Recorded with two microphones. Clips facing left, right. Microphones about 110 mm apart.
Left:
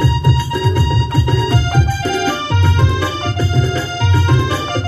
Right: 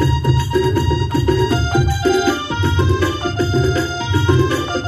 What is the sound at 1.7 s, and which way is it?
Music, 15° right (ahead or behind).